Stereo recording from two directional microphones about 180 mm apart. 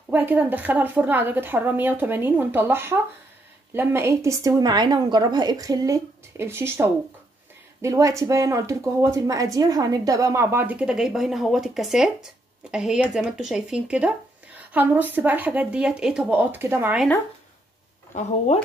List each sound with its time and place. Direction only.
0.1 s a woman's voice: 10° right (ahead or behind)